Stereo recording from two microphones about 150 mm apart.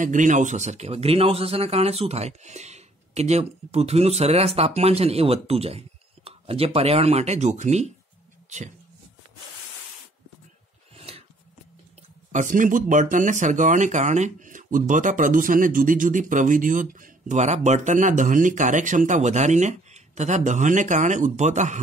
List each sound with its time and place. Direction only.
0.0 s a man's voice: 60° right (ahead or behind)
11.0 s a sound: 40° right (ahead or behind)
12.3 s speech: 55° right (ahead or behind)